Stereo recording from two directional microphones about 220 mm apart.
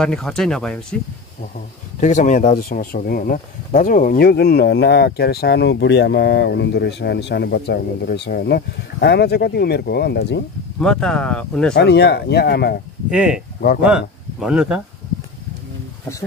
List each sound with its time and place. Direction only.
0.0 s speech: 5° left (ahead or behind)
2.0 s speech: 35° left (ahead or behind)
10.8 s speech: 5° left (ahead or behind)
11.7 s speech: 50° left (ahead or behind)
13.1 s speech: 5° right (ahead or behind)
13.6 s speech: 45° left (ahead or behind)
13.8 s speech: 5° right (ahead or behind)